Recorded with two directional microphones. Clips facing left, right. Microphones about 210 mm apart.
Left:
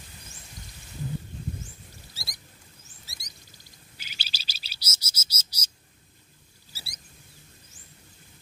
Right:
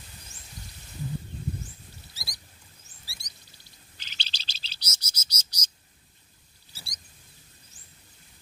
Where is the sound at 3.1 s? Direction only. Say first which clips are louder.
Even; 20° left (ahead or behind).